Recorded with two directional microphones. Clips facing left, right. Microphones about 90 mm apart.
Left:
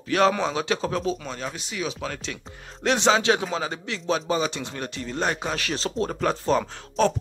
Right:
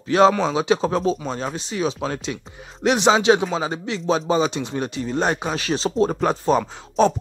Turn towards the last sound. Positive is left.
turn(degrees=-20)  # may be behind; listen again after turning